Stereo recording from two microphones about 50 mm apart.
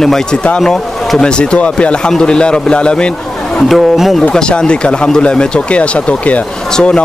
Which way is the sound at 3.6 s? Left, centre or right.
Centre.